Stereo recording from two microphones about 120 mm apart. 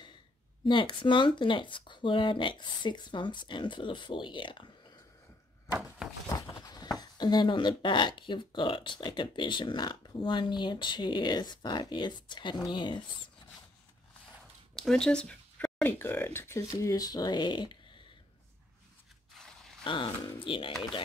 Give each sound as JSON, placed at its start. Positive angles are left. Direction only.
{"t": 0.7, "sound": "speech", "side_deg": 40}
{"t": 6.2, "sound": "speech", "side_deg": 30}
{"t": 14.8, "sound": "speech", "side_deg": 5}
{"t": 19.3, "sound": "a sound", "side_deg": 5}
{"t": 19.8, "sound": "speech", "side_deg": 45}